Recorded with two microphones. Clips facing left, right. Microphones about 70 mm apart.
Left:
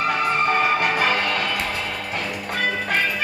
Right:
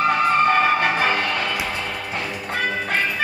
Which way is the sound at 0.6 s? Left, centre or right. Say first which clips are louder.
Right 2 dB; right.